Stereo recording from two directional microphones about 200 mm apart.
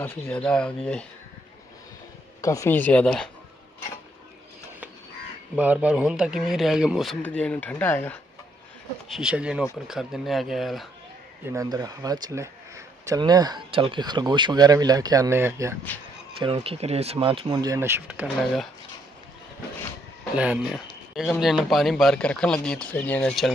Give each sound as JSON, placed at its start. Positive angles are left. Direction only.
{"t": 0.0, "sound": "speech", "side_deg": 10}
{"t": 2.4, "sound": "speech", "side_deg": 15}
{"t": 5.6, "sound": "speech", "side_deg": -10}
{"t": 9.1, "sound": "speech", "side_deg": -5}
{"t": 11.5, "sound": "speech", "side_deg": -20}
{"t": 16.3, "sound": "speech", "side_deg": -25}
{"t": 20.3, "sound": "speech", "side_deg": -5}